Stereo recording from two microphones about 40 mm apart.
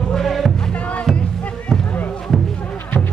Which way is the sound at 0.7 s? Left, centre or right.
Left.